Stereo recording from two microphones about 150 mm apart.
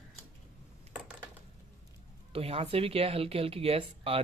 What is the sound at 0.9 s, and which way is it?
Typing, 10° right (ahead or behind).